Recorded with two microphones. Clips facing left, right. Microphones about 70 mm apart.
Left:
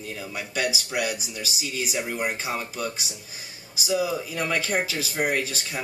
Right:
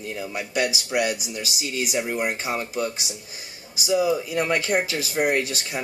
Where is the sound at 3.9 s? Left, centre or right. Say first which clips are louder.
Right 4 dB; right.